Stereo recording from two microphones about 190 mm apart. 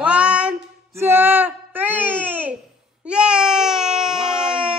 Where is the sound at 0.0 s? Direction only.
5° right (ahead or behind).